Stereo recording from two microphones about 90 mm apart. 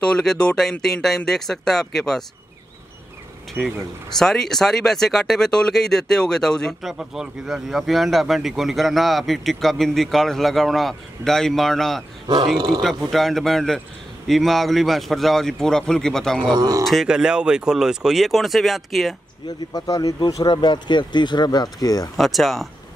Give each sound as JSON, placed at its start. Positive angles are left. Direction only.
{"t": 0.0, "sound": "speech", "side_deg": 10}
{"t": 4.2, "sound": "speech", "side_deg": 5}
{"t": 12.5, "sound": "speech", "side_deg": -50}
{"t": 12.8, "sound": "speech", "side_deg": 0}
{"t": 16.5, "sound": "speech", "side_deg": -45}
{"t": 16.8, "sound": "speech", "side_deg": -5}
{"t": 19.7, "sound": "speech", "side_deg": 45}
{"t": 22.1, "sound": "speech", "side_deg": 0}